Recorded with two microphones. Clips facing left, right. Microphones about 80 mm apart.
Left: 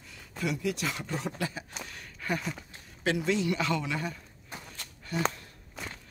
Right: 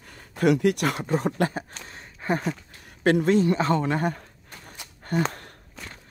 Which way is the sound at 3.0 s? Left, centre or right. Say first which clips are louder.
Right 8 dB; right.